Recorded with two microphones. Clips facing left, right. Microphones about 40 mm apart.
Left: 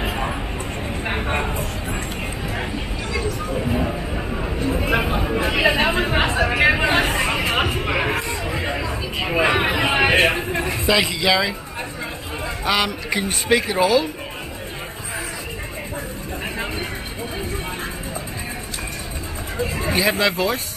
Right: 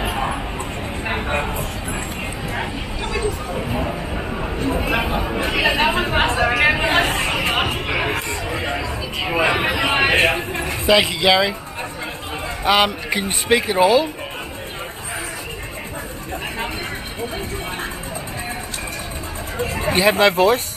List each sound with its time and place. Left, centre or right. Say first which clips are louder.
0.0 s bow-wow: right 2 dB; centre
1.0 s a sound: right 1 dB; centre
5.5 s chatter: right 1 dB; centre
7.8 s a sound: even; centre
8.5 s music: right 1 dB; centre
8.8 s a sound: even; centre
11.0 s a man's voice: right 3 dB; centre
12.6 s a man's voice: right 4 dB; centre
20.0 s speech: right 5 dB; right